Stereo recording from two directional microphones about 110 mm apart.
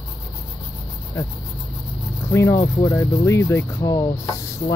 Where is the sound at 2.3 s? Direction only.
25° left (ahead or behind).